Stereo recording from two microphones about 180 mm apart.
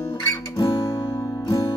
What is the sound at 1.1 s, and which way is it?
Music, 20° left (ahead or behind).